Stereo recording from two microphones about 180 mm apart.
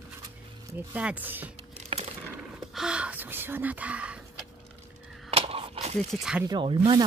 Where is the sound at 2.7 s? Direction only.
5° right (ahead or behind).